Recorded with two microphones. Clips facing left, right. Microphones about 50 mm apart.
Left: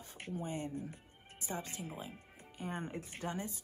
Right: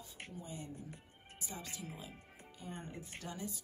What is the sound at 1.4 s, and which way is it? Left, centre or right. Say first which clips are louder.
Speech: left 5 dB; left.